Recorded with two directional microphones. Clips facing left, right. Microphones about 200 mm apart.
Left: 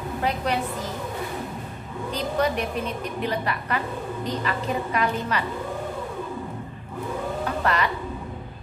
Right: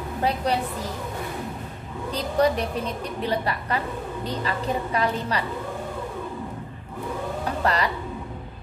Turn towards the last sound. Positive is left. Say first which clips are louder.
# right 1 dB
turn(degrees=-35)  # may be behind; listen again after turning